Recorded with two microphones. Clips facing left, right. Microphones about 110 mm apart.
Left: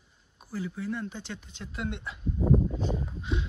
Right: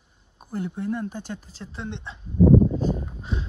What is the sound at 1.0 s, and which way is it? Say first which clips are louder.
Speech: right 5 dB; 45° right (ahead or behind).